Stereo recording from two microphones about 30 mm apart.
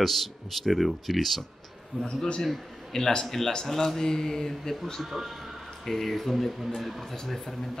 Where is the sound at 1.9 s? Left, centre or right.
Left.